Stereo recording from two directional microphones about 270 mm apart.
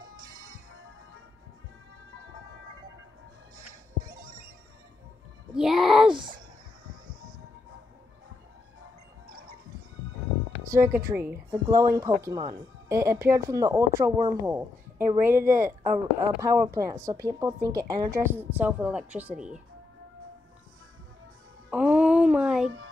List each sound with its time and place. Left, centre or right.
5.5 s a child's voice: centre
6.0 s speech: centre
10.6 s speech: centre
21.6 s music: centre